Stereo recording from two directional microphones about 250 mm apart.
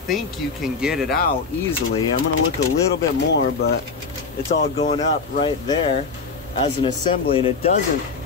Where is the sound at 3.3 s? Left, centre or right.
Left.